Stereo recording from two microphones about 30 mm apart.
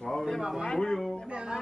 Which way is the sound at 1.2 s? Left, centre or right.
Right.